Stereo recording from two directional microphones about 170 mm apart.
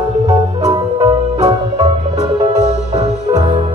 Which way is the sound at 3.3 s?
25° right (ahead or behind).